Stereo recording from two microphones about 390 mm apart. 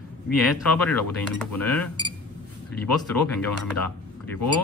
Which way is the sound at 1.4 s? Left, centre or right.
Centre.